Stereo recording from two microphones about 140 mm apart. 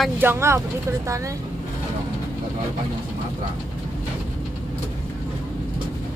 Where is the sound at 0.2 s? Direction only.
15° right (ahead or behind).